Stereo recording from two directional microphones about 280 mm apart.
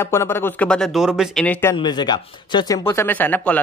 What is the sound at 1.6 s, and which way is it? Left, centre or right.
Speech, centre.